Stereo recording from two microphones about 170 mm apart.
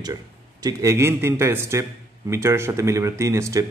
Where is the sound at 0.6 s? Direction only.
20° right (ahead or behind).